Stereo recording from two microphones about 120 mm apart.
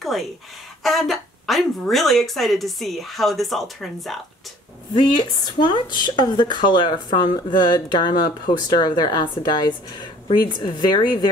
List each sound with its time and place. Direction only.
0.0 s a sound: centre (ahead or behind)
0.8 s a woman's voice: centre (ahead or behind)
5.4 s speech: 40° left (ahead or behind)